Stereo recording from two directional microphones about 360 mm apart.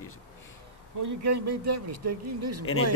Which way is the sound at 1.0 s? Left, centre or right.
Right.